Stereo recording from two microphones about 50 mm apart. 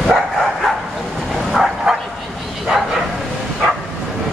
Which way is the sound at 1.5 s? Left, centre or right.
Centre.